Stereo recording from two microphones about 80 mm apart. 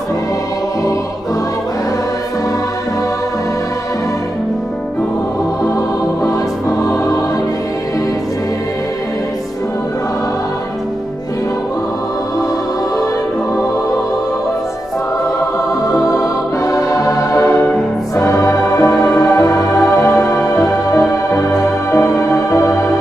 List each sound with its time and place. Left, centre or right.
16.6 s music: left